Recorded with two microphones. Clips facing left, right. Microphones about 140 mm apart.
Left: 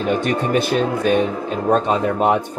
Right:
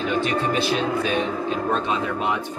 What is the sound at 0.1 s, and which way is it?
Speech, 45° left (ahead or behind).